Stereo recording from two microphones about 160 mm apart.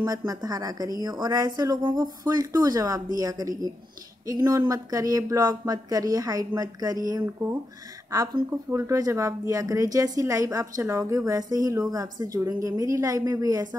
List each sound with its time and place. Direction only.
0.0 s a woman's voice: 25° right (ahead or behind)